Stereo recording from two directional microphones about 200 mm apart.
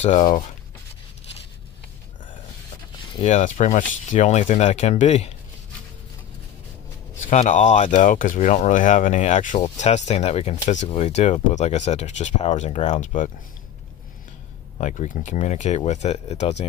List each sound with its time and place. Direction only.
0.0 s speech: 35° left (ahead or behind)
3.2 s speech: 35° left (ahead or behind)
7.2 s speech: 40° left (ahead or behind)
14.8 s speech: 35° left (ahead or behind)